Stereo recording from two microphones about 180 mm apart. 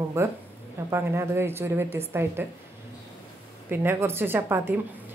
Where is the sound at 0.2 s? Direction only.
15° right (ahead or behind).